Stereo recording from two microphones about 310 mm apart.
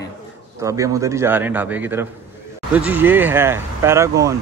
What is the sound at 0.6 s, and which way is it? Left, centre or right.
Speech, centre.